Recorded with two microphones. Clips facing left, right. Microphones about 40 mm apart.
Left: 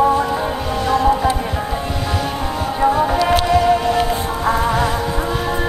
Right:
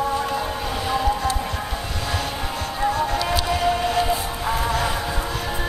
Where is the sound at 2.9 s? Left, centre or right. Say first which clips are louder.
Left 7 dB; centre.